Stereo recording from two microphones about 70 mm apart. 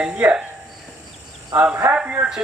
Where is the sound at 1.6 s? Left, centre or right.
Centre.